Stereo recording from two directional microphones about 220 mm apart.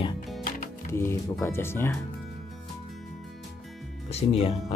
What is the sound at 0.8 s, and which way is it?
Speech, 10° left (ahead or behind).